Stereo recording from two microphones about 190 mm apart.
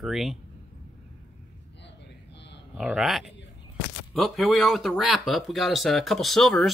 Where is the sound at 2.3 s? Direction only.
65° left (ahead or behind).